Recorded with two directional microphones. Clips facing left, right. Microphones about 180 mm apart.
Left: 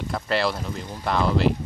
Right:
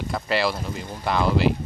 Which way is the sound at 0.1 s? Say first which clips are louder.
Even; 5° right (ahead or behind).